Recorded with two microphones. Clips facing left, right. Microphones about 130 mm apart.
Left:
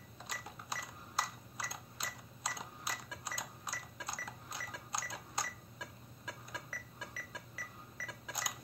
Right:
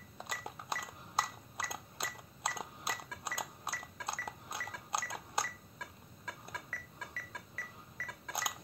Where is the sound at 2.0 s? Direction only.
55° right (ahead or behind).